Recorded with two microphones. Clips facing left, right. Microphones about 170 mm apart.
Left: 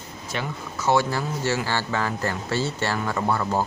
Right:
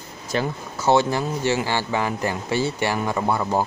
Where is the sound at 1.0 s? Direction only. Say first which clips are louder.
Right 3 dB; 20° right (ahead or behind).